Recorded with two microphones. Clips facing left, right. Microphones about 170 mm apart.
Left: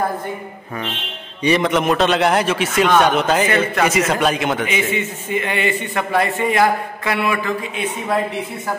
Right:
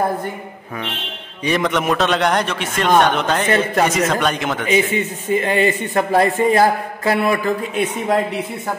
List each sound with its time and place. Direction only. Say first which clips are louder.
1.4 s a man's voice: left 2 dB; centre (ahead or behind)
4.6 s a man's voice: right 4 dB; 40° right (ahead or behind)